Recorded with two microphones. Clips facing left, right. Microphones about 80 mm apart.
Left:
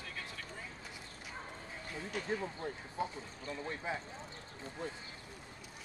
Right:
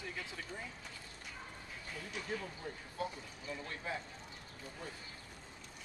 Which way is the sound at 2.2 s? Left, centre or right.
Left.